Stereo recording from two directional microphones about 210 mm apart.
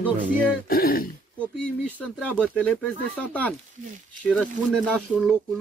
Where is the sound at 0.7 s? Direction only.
45° left (ahead or behind).